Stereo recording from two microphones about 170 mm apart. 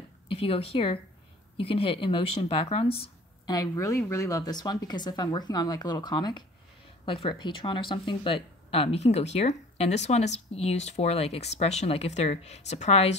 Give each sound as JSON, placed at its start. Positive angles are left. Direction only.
{"t": 0.3, "sound": "speech", "side_deg": 35}
{"t": 3.5, "sound": "speech", "side_deg": 20}